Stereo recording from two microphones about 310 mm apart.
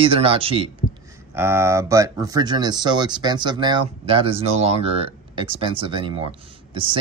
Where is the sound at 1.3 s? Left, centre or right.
Centre.